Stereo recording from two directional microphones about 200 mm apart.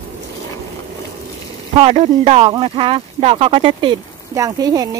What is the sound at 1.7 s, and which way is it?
Speech, 30° right (ahead or behind).